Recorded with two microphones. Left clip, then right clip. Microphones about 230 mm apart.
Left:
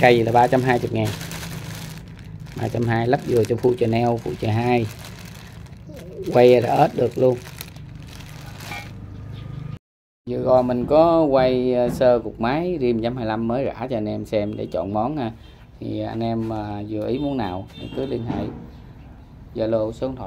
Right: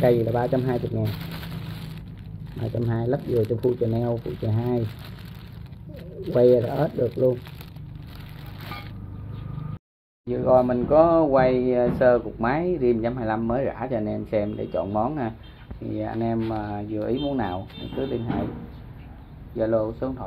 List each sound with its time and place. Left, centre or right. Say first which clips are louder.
0.0 s speech: left 6 dB; left
2.6 s speech: left 6 dB; left
5.9 s speech: left 5 dB; left
10.2 s speech: left 1 dB; left
19.5 s speech: left 1 dB; left